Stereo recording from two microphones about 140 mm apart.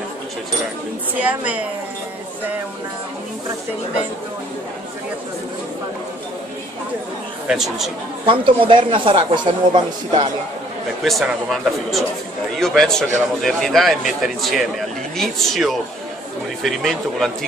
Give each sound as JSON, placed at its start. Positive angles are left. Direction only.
{"t": 1.2, "sound": "a woman's voice", "side_deg": -10}
{"t": 7.4, "sound": "a man's voice", "side_deg": 0}
{"t": 8.3, "sound": "speech", "side_deg": -40}
{"t": 11.1, "sound": "a man's voice", "side_deg": 0}